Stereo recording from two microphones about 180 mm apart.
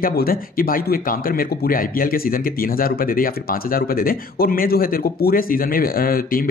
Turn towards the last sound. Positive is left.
turn(degrees=55)  # may be behind; listen again after turning